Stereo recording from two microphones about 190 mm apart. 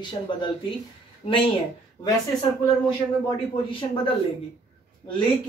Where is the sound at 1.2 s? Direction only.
30° left (ahead or behind).